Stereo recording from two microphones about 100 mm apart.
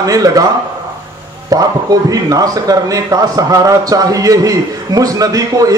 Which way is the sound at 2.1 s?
35° right (ahead or behind).